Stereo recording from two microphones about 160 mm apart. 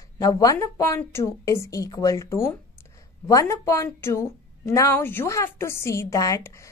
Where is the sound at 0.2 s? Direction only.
20° left (ahead or behind).